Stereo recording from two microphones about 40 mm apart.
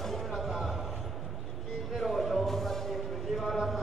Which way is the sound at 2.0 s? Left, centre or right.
Centre.